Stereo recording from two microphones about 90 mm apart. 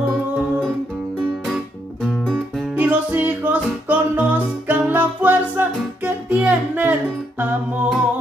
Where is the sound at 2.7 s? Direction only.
15° right (ahead or behind).